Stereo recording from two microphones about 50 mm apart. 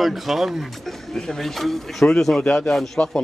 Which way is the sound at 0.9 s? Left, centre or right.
Centre.